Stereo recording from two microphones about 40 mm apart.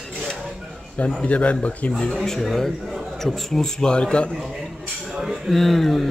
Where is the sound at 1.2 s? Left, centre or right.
Left.